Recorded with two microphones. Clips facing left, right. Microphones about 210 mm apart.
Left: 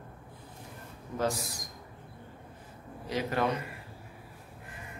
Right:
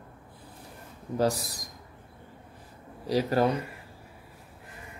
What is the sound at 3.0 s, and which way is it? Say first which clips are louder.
Mantra: right 6 dB; 35° right (ahead or behind).